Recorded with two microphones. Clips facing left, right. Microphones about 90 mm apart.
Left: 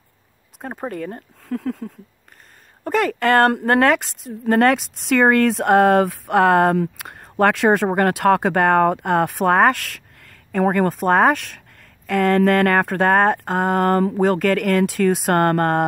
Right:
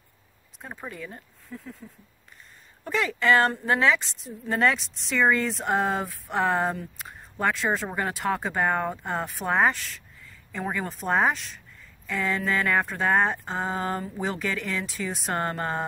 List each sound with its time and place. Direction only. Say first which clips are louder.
0.6 s speech: left 10 dB; 55° left (ahead or behind)
1.5 s a sound: left 15 dB; 90° left
2.8 s a woman's voice: left 7 dB; 50° left (ahead or behind)